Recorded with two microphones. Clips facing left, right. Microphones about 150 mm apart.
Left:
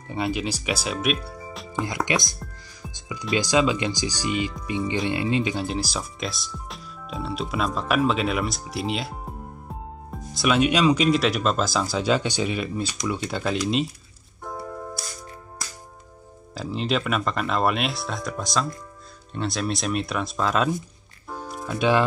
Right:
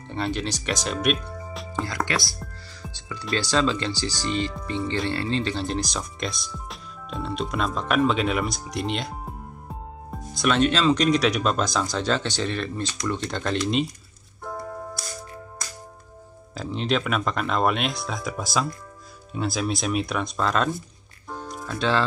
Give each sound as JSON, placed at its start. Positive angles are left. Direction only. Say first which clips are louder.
{"t": 0.1, "sound": "speech", "louder": "left 1 dB", "side_deg": 10}
{"t": 1.8, "sound": "speech", "louder": "left 2 dB", "side_deg": 15}
{"t": 2.8, "sound": "music", "louder": "left 1 dB", "side_deg": 15}
{"t": 3.3, "sound": "speech", "louder": "left 2 dB", "side_deg": 10}
{"t": 10.1, "sound": "speech", "louder": "left 1 dB", "side_deg": 0}
{"t": 11.1, "sound": "speech", "louder": "even", "side_deg": 0}
{"t": 16.5, "sound": "speech", "louder": "even", "side_deg": 0}
{"t": 21.3, "sound": "music", "louder": "left 2 dB", "side_deg": 5}